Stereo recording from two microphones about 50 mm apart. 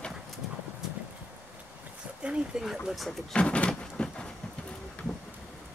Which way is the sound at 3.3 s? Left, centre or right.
Left.